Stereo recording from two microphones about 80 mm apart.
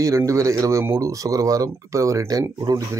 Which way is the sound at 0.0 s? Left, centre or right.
Right.